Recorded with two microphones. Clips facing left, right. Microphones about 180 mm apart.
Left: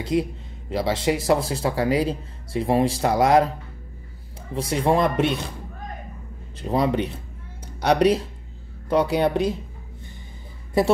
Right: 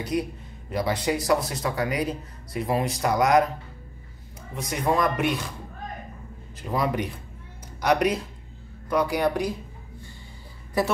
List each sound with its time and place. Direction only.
0.0 s speech: 25° left (ahead or behind)
4.6 s speech: 30° left (ahead or behind)
6.6 s speech: 25° left (ahead or behind)